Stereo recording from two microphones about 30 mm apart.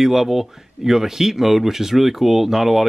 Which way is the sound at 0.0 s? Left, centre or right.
Centre.